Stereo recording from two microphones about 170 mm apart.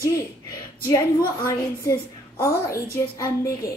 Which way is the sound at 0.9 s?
25° left (ahead or behind).